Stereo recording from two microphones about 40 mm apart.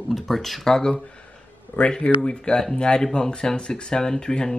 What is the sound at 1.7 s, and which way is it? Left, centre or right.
Speech, left.